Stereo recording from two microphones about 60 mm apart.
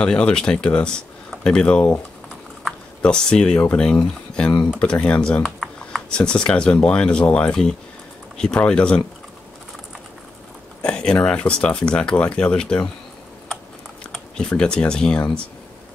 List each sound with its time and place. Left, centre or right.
0.0 s speech: centre
3.0 s speech: centre
5.4 s typing: centre
6.0 s speech: centre
8.5 s speech: centre
10.8 s a sound: centre
11.2 s speech: centre
14.3 s speech: centre